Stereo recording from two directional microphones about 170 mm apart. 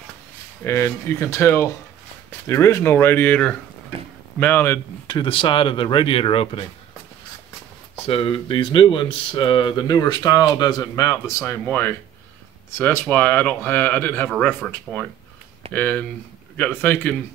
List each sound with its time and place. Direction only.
0.7 s speech: 15° left (ahead or behind)
5.0 s speech: 25° left (ahead or behind)
8.0 s speech: 35° left (ahead or behind); by 17.1 s 10° left (ahead or behind)